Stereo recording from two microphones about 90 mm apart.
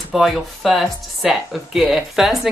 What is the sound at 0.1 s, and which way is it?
Speech, centre (ahead or behind).